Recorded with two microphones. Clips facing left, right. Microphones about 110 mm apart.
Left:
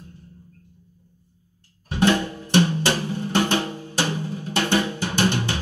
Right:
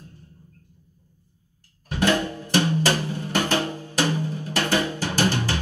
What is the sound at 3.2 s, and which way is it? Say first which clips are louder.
Music: left 3 dB; 30° left (ahead or behind).